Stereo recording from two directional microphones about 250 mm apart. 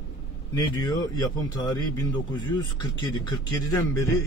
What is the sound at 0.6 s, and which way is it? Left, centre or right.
A man's voice, centre.